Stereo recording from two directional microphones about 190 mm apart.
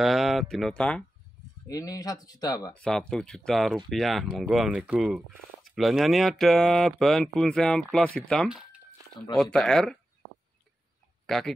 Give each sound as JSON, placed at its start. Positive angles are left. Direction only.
{"t": 0.0, "sound": "speech", "side_deg": 0}
{"t": 1.7, "sound": "speech", "side_deg": 20}
{"t": 2.7, "sound": "speech", "side_deg": 5}
{"t": 11.2, "sound": "speech", "side_deg": 5}